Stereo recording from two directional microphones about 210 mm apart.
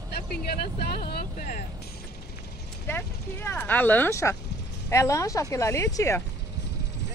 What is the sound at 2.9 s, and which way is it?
Speech, 10° left (ahead or behind).